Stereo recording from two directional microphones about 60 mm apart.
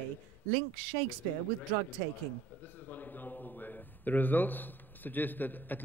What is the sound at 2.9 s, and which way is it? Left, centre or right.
A man's voice, left.